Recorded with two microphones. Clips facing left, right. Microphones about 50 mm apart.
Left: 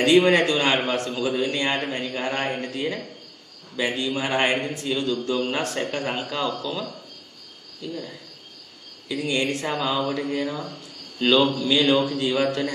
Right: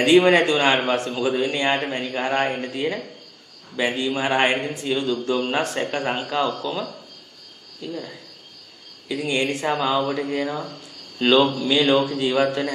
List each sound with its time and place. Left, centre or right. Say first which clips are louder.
0.0 s a man's voice: right 2 dB; centre
9.1 s a man's voice: right 1 dB; centre